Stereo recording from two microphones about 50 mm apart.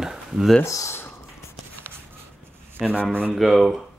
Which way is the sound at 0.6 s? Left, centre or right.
Left.